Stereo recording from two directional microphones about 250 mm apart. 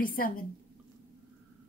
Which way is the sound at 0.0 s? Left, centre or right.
Left.